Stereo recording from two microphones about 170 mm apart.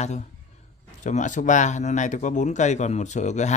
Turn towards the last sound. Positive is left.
turn(degrees=45)  # may be behind; listen again after turning